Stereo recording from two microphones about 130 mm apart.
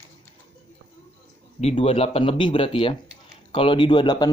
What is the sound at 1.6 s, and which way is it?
Speech, 50° left (ahead or behind).